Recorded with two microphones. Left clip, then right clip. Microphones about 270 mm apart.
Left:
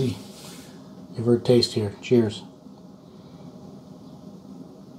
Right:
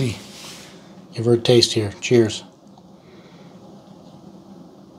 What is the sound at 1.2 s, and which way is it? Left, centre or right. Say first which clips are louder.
Speech: right 4 dB; right.